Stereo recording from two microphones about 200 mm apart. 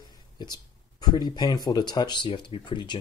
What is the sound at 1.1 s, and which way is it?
Speech, 20° left (ahead or behind).